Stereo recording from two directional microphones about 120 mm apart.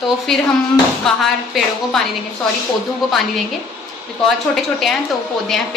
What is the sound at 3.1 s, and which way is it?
Speech, centre (ahead or behind).